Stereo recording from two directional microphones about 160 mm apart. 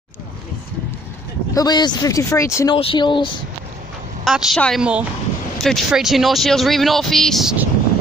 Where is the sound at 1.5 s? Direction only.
25° left (ahead or behind).